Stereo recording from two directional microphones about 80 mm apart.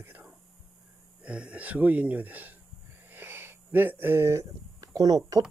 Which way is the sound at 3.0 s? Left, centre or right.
Right.